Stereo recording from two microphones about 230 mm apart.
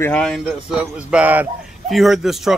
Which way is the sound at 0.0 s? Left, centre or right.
Centre.